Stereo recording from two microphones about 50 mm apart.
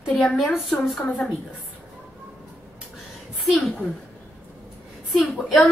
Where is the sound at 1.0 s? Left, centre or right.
Left.